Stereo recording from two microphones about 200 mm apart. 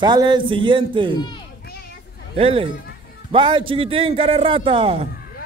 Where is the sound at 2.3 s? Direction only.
30° right (ahead or behind).